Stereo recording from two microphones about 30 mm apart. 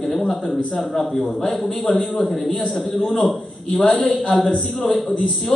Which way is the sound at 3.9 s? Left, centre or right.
Left.